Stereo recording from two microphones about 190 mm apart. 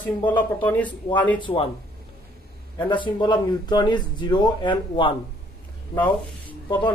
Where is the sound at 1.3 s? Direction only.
25° left (ahead or behind).